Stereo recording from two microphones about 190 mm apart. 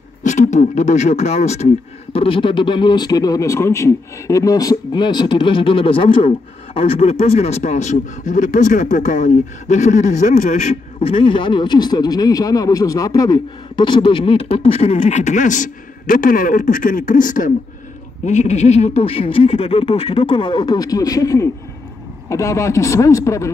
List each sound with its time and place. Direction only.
0.2 s a man's voice: 40° left (ahead or behind)
11.0 s a man's voice: 30° left (ahead or behind)